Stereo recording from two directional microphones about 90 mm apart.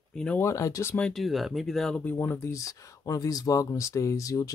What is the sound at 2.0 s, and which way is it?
Speech, 25° left (ahead or behind).